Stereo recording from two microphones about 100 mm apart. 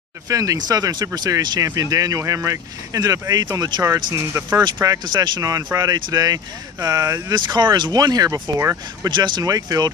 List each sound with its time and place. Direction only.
0.3 s speech: 35° right (ahead or behind)
4.8 s speech: 40° right (ahead or behind)
5.4 s speech: 35° right (ahead or behind)
9.1 s speech: 45° right (ahead or behind)